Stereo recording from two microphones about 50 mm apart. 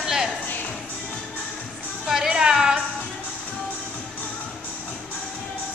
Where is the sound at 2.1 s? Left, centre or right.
Centre.